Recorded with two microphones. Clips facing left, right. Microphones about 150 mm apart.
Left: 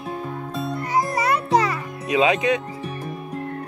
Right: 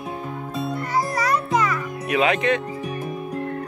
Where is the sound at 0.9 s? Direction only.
25° left (ahead or behind).